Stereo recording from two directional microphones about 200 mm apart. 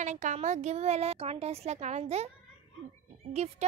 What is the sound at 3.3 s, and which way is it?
Speech, 30° right (ahead or behind).